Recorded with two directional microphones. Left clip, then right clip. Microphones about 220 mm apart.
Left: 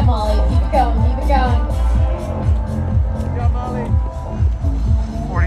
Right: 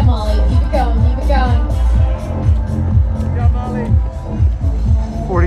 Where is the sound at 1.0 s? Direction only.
40° left (ahead or behind).